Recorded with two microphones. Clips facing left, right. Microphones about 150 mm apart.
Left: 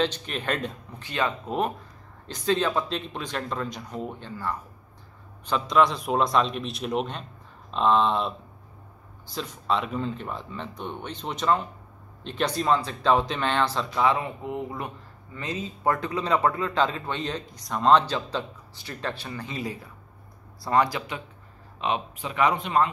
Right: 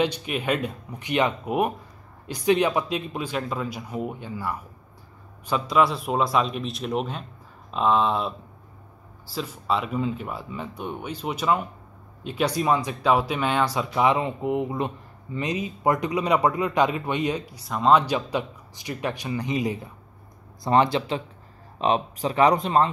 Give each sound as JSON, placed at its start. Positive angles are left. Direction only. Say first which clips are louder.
{"t": 0.0, "sound": "a man's voice", "louder": "right 2 dB", "side_deg": -10}
{"t": 21.7, "sound": "speech", "louder": "right 5 dB", "side_deg": -35}